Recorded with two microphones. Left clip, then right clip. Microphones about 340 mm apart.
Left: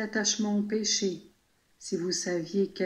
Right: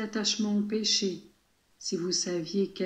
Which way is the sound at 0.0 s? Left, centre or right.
Centre.